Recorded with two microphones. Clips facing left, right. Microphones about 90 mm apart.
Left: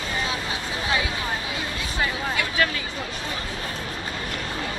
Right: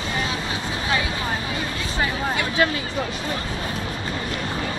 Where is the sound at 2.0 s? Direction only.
15° right (ahead or behind).